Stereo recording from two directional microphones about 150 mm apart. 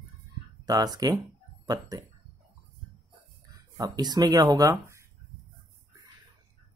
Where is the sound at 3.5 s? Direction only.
25° right (ahead or behind).